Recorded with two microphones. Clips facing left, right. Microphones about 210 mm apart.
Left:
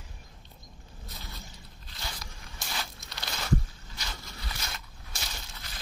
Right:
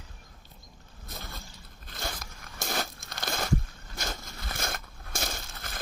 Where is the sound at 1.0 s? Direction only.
50° right (ahead or behind).